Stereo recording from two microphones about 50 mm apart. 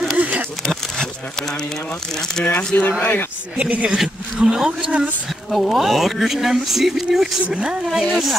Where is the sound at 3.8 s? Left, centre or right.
Centre.